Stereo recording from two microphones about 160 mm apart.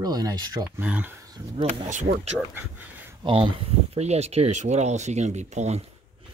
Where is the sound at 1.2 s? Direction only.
25° right (ahead or behind).